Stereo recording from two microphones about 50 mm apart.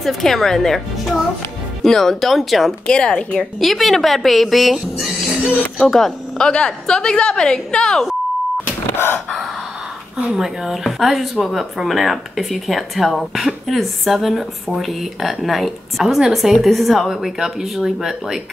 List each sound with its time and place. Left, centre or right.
0.0 s a woman's voice: centre
2.9 s a woman's voice: centre
3.5 s a woman's voice: centre
5.8 s a woman's voice: centre
8.9 s crowing: left
10.3 s a woman's voice: centre